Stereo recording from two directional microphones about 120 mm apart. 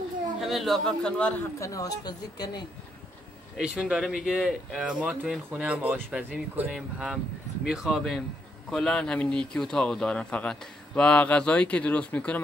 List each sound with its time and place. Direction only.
0.4 s a man's voice: centre (ahead or behind)
1.6 s a woman's voice: 30° left (ahead or behind)
3.5 s speech: 5° right (ahead or behind); by 12.4 s 10° left (ahead or behind)